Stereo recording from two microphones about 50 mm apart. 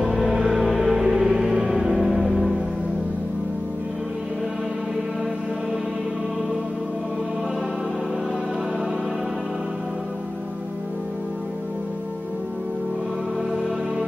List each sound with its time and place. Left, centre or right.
0.0 s music: centre
2.2 s music: centre